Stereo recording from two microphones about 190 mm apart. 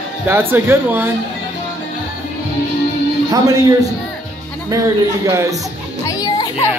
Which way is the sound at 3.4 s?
20° right (ahead or behind).